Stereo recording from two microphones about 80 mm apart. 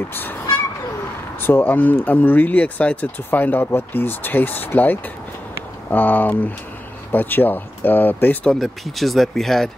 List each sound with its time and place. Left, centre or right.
0.1 s speech: left
1.4 s speech: left
8.5 s speech: centre